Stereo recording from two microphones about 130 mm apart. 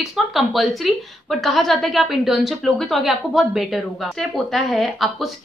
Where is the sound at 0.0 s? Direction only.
Centre (ahead or behind).